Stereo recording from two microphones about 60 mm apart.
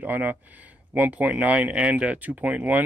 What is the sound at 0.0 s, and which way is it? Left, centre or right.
Speech, right.